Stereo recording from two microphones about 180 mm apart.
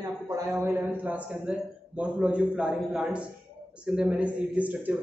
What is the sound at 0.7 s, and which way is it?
A man's voice, 5° right (ahead or behind).